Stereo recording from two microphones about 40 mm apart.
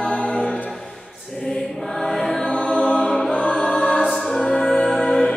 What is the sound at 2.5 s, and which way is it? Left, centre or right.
Music, left.